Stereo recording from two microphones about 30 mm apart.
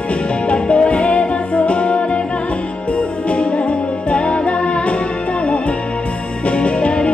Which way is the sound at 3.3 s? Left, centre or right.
Left.